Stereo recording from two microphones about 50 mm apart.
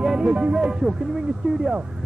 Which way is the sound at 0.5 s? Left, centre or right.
Centre.